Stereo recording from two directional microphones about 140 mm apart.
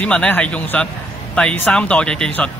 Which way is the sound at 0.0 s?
10° left (ahead or behind).